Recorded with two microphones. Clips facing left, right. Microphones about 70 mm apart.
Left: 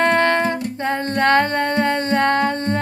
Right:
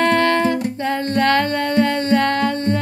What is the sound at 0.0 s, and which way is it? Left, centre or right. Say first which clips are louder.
Music: even; left.